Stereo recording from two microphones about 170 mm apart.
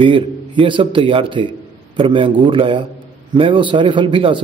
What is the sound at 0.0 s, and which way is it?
A man's voice, 30° right (ahead or behind).